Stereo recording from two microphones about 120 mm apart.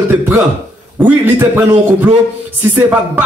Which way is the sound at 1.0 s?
15° right (ahead or behind).